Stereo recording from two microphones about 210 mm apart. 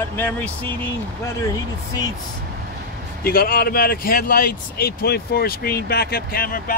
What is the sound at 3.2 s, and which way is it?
Speech, 45° left (ahead or behind).